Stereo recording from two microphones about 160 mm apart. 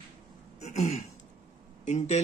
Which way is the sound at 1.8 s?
45° left (ahead or behind).